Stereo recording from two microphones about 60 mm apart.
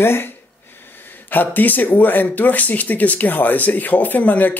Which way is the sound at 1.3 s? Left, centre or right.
Left.